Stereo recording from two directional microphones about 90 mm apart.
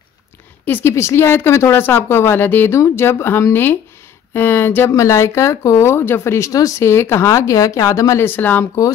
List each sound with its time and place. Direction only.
0.7 s speech: 30° left (ahead or behind)
8.3 s speech: 20° left (ahead or behind)